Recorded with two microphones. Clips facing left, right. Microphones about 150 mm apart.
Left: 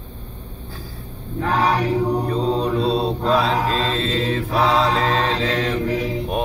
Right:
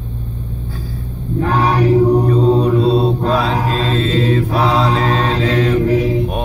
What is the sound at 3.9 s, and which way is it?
Mantra, 45° right (ahead or behind).